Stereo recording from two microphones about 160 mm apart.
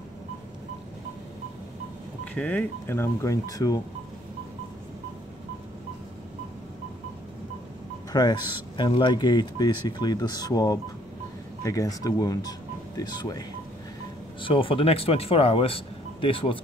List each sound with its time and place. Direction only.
2.3 s speech: 10° left (ahead or behind)
8.1 s speech: 25° left (ahead or behind)
14.4 s speech: 35° left (ahead or behind)